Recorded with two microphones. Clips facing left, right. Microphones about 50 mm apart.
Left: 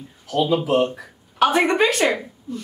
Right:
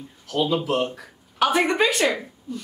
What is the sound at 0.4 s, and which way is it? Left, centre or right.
Speech, centre.